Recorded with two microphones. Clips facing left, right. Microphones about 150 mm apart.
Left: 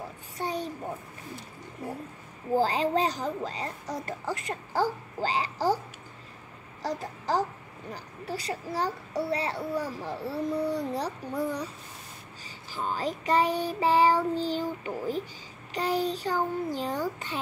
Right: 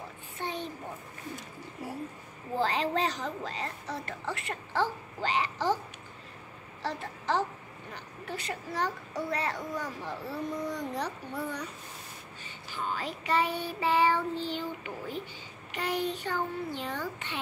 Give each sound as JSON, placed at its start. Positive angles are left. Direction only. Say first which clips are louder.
{"t": 0.4, "sound": "a sound", "louder": "left 4 dB", "side_deg": 40}
{"t": 2.5, "sound": "a woman's voice", "louder": "left 4 dB", "side_deg": 35}
{"t": 6.8, "sound": "a child's voice", "louder": "left 3 dB", "side_deg": 35}
{"t": 12.7, "sound": "a woman's voice", "louder": "left 4 dB", "side_deg": 40}